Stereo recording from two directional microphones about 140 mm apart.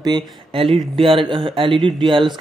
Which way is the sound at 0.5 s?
40° right (ahead or behind).